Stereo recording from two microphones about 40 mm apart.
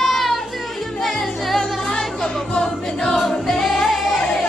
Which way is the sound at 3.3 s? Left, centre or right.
Centre.